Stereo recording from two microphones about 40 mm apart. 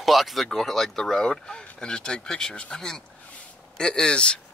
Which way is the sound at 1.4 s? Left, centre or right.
Left.